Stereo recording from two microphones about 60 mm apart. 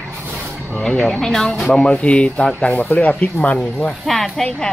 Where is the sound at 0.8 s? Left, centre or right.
Centre.